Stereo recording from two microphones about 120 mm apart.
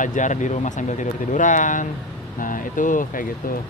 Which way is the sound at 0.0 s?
90° left.